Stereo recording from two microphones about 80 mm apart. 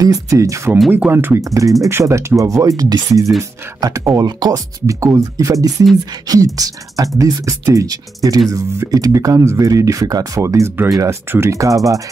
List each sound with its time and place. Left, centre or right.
0.0 s speech: right
0.9 s speech: right
1.4 s speech: right